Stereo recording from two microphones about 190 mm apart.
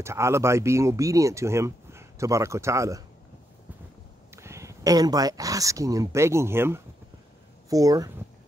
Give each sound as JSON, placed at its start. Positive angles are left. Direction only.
{"t": 0.0, "sound": "speech", "side_deg": -15}
{"t": 4.4, "sound": "speech", "side_deg": -15}